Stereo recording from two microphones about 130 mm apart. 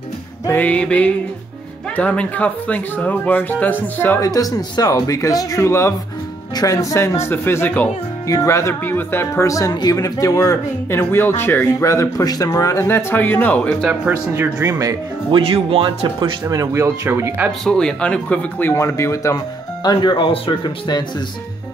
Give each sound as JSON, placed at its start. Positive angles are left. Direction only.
{"t": 0.5, "sound": "speech", "side_deg": 10}
{"t": 4.2, "sound": "speech", "side_deg": 30}
{"t": 8.3, "sound": "speech", "side_deg": 25}
{"t": 13.8, "sound": "speech", "side_deg": -5}
{"t": 14.3, "sound": "speech", "side_deg": -20}
{"t": 15.3, "sound": "speech", "side_deg": -50}
{"t": 16.2, "sound": "speech", "side_deg": -30}
{"t": 17.5, "sound": "speech", "side_deg": 5}